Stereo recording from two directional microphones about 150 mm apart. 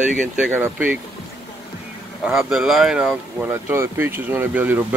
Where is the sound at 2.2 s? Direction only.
5° right (ahead or behind).